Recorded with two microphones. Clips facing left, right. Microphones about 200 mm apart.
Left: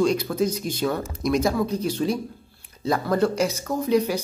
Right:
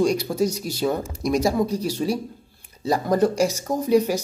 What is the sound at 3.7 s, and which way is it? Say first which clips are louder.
Speech: right 1 dB; 35° right (ahead or behind).